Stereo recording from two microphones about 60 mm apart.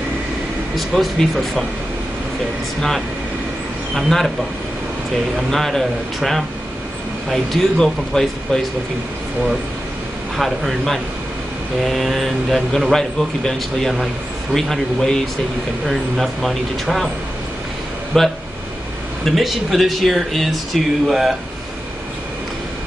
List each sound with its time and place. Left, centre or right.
0.7 s speech: centre
3.9 s speech: centre
5.5 s speech: centre
10.3 s speech: centre
18.1 s speech: centre